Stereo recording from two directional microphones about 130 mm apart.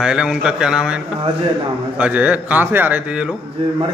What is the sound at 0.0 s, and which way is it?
A man's voice, 5° right (ahead or behind).